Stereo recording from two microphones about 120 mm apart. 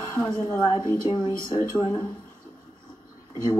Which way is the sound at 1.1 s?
40° left (ahead or behind).